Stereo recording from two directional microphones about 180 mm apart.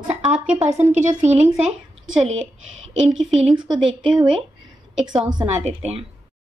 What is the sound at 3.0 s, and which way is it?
Speech, centre (ahead or behind).